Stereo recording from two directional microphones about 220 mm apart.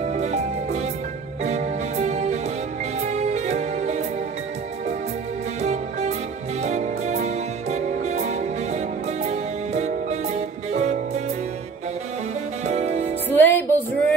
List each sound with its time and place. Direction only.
0.0 s music: 30° right (ahead or behind)
5.6 s music: 30° right (ahead or behind)
12.6 s music: 30° right (ahead or behind)
13.3 s music: 10° left (ahead or behind)